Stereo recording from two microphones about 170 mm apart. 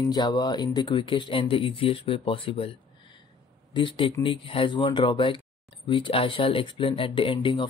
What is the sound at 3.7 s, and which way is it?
Speech, 30° left (ahead or behind).